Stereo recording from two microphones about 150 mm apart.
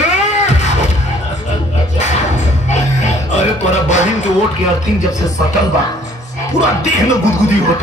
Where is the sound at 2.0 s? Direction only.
50° left (ahead or behind).